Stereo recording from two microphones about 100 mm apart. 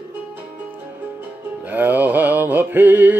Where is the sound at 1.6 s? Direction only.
20° right (ahead or behind).